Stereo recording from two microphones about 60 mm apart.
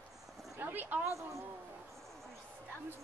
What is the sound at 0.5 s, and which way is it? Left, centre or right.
Speech, right.